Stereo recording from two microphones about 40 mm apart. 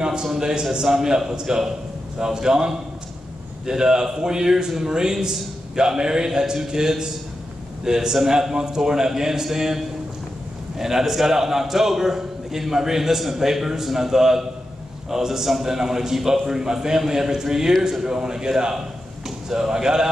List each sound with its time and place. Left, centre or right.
0.0 s a man's voice: centre